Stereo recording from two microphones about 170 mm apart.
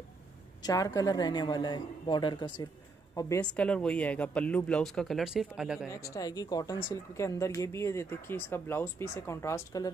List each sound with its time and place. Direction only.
0.6 s a woman's voice: 20° left (ahead or behind)
3.5 s speech: 5° left (ahead or behind)
5.9 s speech: 20° left (ahead or behind)